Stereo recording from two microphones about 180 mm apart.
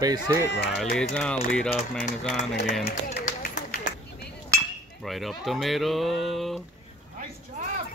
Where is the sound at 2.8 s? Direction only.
45° left (ahead or behind).